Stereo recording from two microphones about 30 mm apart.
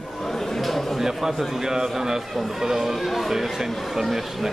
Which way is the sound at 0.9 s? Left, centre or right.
Centre.